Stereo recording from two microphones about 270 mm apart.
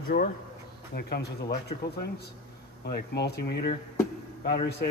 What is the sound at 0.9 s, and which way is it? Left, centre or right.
Speech, left.